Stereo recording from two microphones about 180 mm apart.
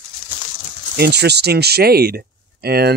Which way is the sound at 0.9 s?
65° right (ahead or behind).